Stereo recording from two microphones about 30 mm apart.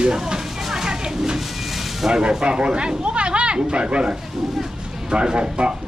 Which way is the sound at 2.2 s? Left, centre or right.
Right.